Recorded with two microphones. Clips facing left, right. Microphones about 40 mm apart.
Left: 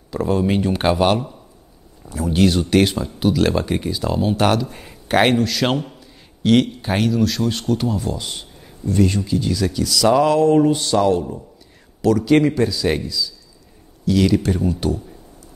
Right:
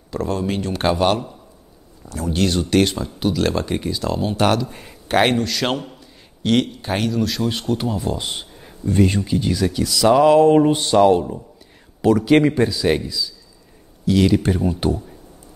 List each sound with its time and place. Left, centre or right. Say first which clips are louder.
0.1 s a man's voice: left 4 dB; centre
8.1 s a man's voice: right 2 dB; right